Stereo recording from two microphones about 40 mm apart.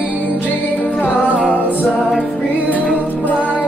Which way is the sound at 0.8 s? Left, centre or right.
Left.